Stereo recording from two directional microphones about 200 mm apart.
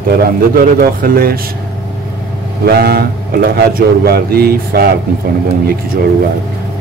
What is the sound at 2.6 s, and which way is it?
A man's voice, 50° right (ahead or behind).